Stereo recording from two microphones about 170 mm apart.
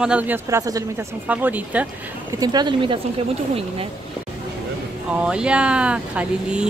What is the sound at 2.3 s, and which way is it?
Speech, 25° right (ahead or behind).